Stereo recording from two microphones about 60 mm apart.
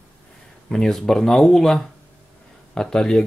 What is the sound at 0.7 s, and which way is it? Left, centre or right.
Speech, centre.